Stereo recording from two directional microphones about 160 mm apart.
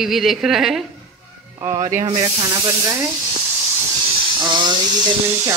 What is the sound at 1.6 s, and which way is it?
Speech, 20° right (ahead or behind).